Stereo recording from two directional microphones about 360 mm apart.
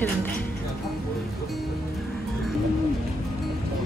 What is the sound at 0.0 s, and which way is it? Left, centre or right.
Music, centre.